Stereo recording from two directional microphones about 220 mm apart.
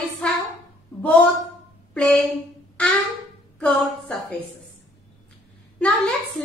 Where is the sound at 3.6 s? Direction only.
5° left (ahead or behind).